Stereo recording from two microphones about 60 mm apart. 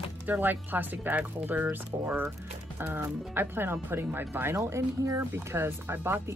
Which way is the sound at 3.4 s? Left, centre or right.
Right.